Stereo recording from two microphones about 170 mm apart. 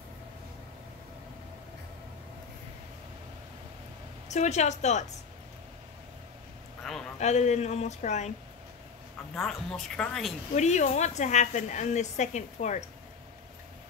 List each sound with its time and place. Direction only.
4.3 s a woman's voice: 40° left (ahead or behind)
6.8 s a sound: centre (ahead or behind)
7.2 s speech: 40° left (ahead or behind)
9.3 s a woman's voice: centre (ahead or behind)
10.5 s a woman's voice: 45° left (ahead or behind)